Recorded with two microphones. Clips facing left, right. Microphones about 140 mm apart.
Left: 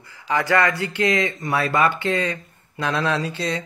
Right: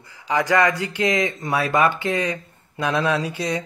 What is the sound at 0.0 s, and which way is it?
Speech, 15° right (ahead or behind).